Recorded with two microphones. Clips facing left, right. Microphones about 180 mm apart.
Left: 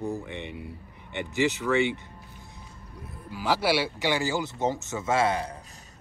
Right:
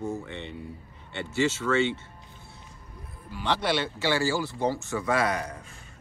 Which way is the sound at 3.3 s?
5° left (ahead or behind).